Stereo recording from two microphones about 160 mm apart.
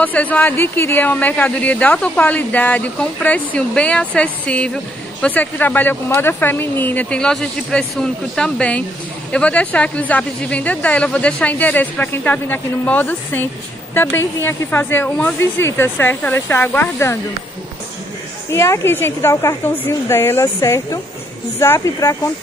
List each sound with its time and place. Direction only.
0.0 s speech: 10° left (ahead or behind)
18.5 s speech: 15° left (ahead or behind)